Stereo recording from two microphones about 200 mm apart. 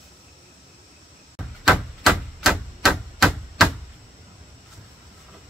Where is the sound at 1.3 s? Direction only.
Centre (ahead or behind).